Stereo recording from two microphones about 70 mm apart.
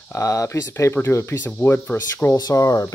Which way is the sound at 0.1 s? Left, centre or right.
Left.